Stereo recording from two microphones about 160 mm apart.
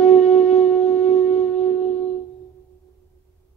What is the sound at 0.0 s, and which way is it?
Wind instrument, 45° left (ahead or behind).